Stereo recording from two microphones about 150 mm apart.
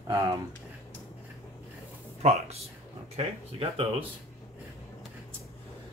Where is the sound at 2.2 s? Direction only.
50° right (ahead or behind).